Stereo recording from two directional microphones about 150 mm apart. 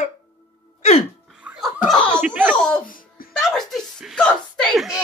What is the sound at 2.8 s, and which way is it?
Music, 70° left (ahead or behind).